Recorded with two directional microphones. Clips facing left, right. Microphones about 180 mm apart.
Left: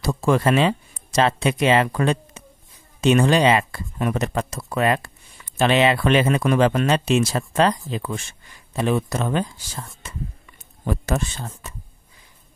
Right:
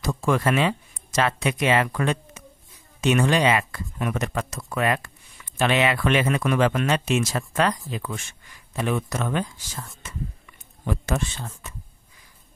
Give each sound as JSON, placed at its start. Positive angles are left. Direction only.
{"t": 0.0, "sound": "speech", "side_deg": 30}
{"t": 10.9, "sound": "speech", "side_deg": 40}